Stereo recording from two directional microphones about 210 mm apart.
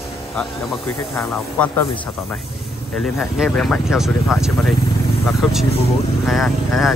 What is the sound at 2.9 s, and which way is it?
Speech, 5° left (ahead or behind).